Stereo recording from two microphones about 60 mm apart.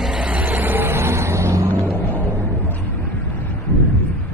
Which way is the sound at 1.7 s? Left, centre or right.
Left.